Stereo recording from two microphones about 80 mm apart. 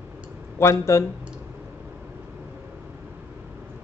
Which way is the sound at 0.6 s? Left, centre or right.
Left.